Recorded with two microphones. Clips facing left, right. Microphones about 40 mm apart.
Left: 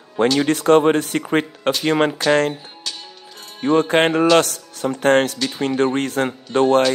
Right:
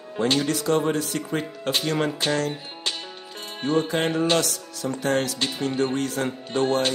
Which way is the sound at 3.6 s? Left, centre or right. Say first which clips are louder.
Left 7 dB; left.